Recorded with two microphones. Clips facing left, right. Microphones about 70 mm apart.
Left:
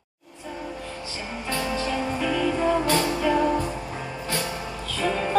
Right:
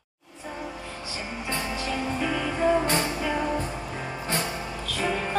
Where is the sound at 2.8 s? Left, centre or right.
Right.